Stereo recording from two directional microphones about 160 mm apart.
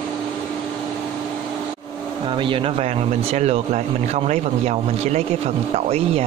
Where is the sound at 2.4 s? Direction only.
35° right (ahead or behind).